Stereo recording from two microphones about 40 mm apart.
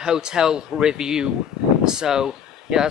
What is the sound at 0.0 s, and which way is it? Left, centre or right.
Speech, centre.